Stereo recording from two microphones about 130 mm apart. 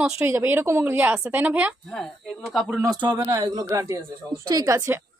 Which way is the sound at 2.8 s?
25° right (ahead or behind).